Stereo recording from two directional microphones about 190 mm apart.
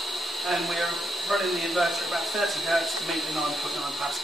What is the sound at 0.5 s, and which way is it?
Speech, centre (ahead or behind).